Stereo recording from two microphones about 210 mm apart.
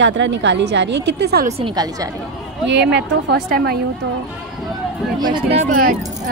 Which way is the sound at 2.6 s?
55° right (ahead or behind).